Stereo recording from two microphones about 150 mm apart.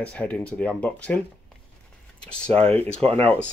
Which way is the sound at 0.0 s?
10° left (ahead or behind).